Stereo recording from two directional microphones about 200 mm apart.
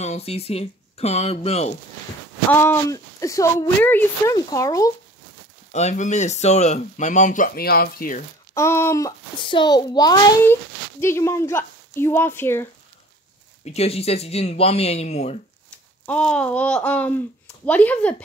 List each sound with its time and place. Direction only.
0.0 s speech: 30° left (ahead or behind)
2.5 s a child's voice: 10° left (ahead or behind)
5.7 s speech: 35° left (ahead or behind)
8.5 s a child's voice: 15° left (ahead or behind)
13.7 s speech: 30° left (ahead or behind)
16.1 s a child's voice: 5° left (ahead or behind)